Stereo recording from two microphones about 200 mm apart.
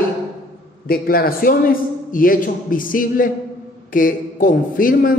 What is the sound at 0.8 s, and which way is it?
A man's voice, 50° left (ahead or behind).